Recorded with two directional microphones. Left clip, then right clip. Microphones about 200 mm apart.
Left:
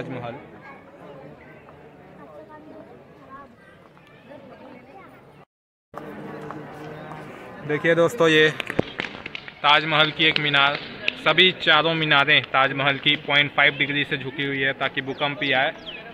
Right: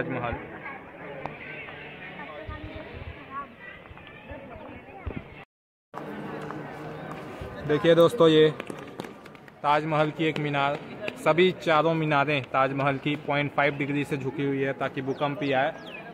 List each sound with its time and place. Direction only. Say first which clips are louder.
0.0 s speech: right 2 dB; 20° left (ahead or behind)
7.2 s speech: right 1 dB; 10° right (ahead or behind)
9.6 s a man's voice: left 6 dB; 5° right (ahead or behind)